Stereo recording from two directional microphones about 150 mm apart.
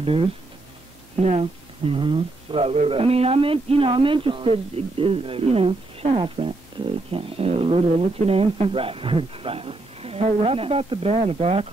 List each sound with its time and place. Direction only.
0.0 s a man's voice: 40° right (ahead or behind)